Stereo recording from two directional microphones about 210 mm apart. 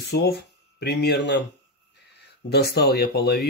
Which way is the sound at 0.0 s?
50° left (ahead or behind).